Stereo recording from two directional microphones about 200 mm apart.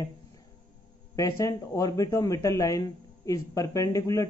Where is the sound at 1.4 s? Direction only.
15° left (ahead or behind).